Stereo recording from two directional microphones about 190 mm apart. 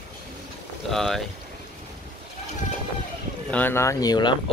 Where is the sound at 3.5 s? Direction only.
10° left (ahead or behind).